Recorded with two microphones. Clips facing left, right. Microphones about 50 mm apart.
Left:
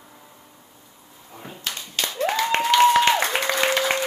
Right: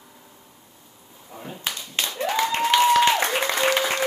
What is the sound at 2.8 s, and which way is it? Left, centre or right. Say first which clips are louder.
Applause: left 1 dB; left.